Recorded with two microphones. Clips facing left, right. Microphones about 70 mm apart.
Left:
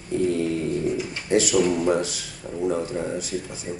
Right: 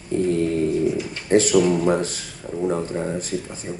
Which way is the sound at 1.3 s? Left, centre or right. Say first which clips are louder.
Right 4 dB; right.